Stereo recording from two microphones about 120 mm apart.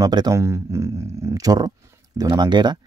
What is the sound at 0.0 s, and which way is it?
Speech, 35° right (ahead or behind).